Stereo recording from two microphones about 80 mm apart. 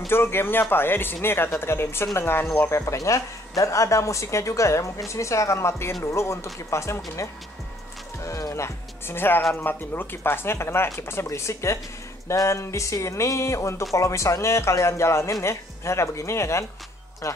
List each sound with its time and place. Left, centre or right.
0.1 s speech: left
2.8 s speech: left